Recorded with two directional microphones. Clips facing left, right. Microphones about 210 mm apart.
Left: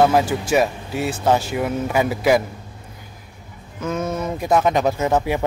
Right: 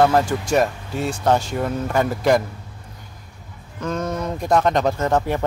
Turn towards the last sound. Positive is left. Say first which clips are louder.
# left 1 dB
turn(degrees=5)  # may be behind; listen again after turning